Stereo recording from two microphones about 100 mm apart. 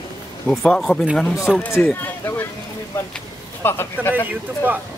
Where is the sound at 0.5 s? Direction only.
5° left (ahead or behind).